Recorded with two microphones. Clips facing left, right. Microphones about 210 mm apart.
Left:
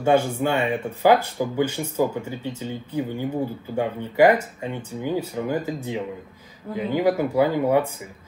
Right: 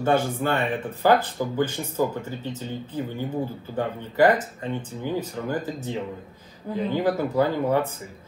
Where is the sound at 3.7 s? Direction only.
10° left (ahead or behind).